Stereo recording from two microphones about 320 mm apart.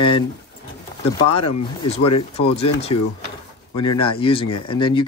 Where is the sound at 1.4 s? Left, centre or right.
Left.